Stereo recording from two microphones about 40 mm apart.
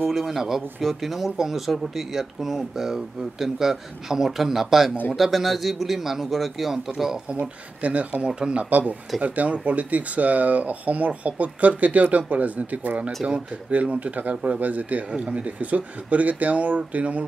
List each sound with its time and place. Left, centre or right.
0.1 s a man's voice: centre
7.8 s speech: right
8.3 s speech: right
8.6 s speech: right
14.3 s speech: right
14.6 s speech: right
15.0 s speech: right